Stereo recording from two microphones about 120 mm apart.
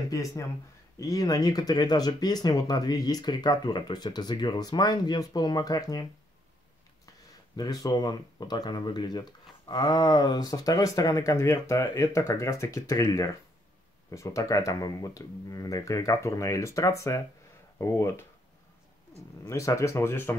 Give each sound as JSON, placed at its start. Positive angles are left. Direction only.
{"t": 0.1, "sound": "speech", "side_deg": 30}
{"t": 7.5, "sound": "speech", "side_deg": 30}
{"t": 19.4, "sound": "speech", "side_deg": 25}